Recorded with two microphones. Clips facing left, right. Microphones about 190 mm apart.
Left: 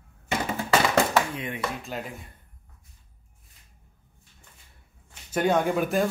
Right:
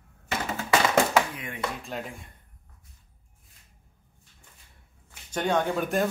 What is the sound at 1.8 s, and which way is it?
Speech, centre (ahead or behind).